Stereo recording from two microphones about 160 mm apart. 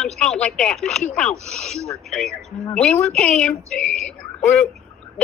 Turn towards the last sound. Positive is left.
turn(degrees=10)  # may be behind; listen again after turning